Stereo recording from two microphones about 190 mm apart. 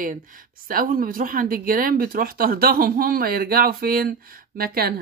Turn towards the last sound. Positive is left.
turn(degrees=-50)  # may be behind; listen again after turning